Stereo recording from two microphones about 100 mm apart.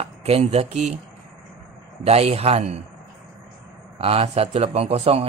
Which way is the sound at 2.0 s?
90° right.